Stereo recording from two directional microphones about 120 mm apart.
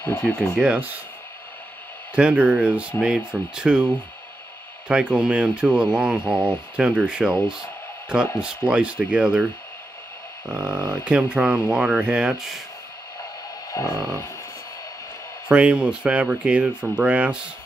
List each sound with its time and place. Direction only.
0.0 s speech: 20° left (ahead or behind)
0.6 s speech: 10° right (ahead or behind)
2.1 s speech: 10° right (ahead or behind)
10.5 s speech: 5° right (ahead or behind)
13.7 s a sound: 25° left (ahead or behind)
15.4 s speech: 10° right (ahead or behind)